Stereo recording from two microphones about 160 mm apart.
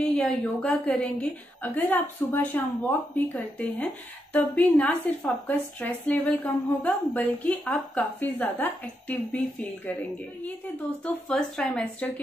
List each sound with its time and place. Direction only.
0.1 s a woman's voice: 5° left (ahead or behind)
11.1 s speech: 5° left (ahead or behind)